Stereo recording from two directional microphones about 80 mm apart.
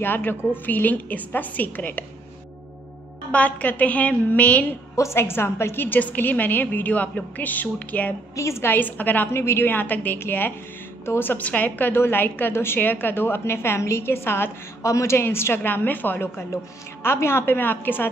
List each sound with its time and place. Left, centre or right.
0.0 s a woman's voice: left
3.3 s a woman's voice: centre
4.9 s a woman's voice: left
8.4 s a woman's voice: left